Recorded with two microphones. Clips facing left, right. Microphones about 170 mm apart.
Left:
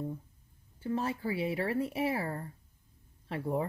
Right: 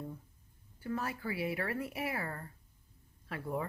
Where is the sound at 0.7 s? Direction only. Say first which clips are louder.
Left 5 dB; 25° left (ahead or behind).